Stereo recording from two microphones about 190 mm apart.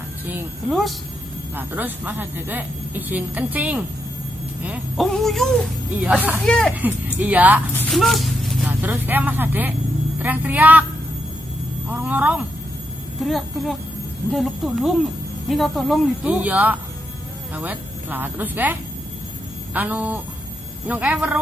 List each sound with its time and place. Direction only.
0.3 s speech: 10° right (ahead or behind)
6.0 s speech: 10° right (ahead or behind)
6.4 s speech: 5° left (ahead or behind)
6.7 s speech: 10° right (ahead or behind)
7.7 s speech: 5° left (ahead or behind)
8.8 s speech: 10° right (ahead or behind)
11.9 s speech: 10° right (ahead or behind)